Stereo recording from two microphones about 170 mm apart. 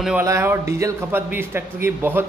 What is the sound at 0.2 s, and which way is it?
A man's voice, 15° right (ahead or behind).